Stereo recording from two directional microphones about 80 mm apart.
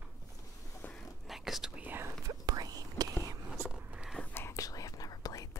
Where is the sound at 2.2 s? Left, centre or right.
Right.